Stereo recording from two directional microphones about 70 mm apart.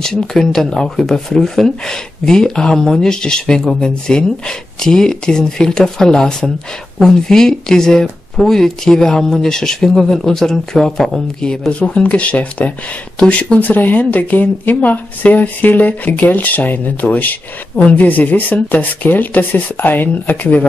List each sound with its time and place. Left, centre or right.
0.0 s speech: centre; by 20.6 s left